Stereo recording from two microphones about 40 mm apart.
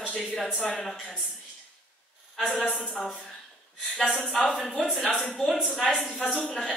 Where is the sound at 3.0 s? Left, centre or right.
Centre.